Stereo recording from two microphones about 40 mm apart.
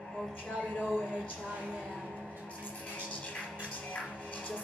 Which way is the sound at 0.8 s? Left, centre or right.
Right.